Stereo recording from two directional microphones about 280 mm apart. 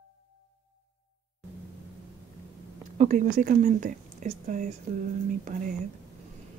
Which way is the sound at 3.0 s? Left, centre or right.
Right.